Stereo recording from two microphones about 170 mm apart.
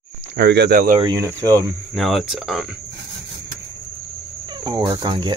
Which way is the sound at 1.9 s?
Centre (ahead or behind).